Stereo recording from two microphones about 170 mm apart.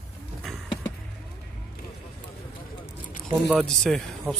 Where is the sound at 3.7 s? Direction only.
5° left (ahead or behind).